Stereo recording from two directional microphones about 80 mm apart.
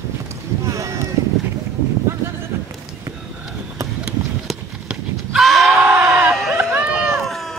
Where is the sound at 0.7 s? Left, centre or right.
Right.